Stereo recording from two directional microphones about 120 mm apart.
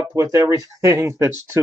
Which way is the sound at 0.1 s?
25° right (ahead or behind).